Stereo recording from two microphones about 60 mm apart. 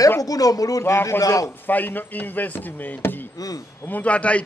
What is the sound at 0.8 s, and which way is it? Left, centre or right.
Speech, left.